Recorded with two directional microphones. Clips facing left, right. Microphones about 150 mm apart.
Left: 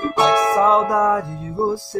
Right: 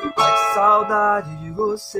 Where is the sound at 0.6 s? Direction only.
20° left (ahead or behind).